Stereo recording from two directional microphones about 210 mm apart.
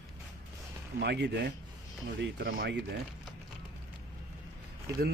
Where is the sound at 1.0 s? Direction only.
55° right (ahead or behind).